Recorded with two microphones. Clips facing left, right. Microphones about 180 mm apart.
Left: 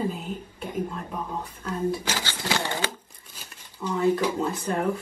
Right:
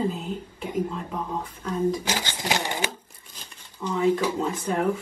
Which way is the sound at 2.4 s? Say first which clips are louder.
Left 1 dB; 15° right (ahead or behind).